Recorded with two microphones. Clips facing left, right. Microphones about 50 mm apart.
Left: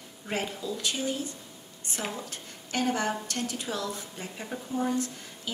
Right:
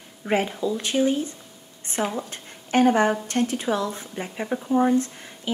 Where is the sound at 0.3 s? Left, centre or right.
Right.